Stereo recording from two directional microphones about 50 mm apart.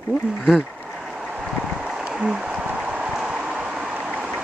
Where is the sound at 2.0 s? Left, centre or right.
Centre.